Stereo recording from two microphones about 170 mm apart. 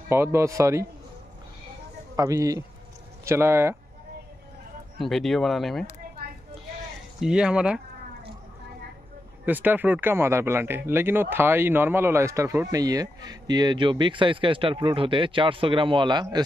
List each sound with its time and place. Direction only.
0.1 s speech: 15° right (ahead or behind)
2.1 s speech: 20° right (ahead or behind)
4.9 s speech: centre (ahead or behind)
7.2 s speech: 5° right (ahead or behind)
9.5 s speech: 10° right (ahead or behind)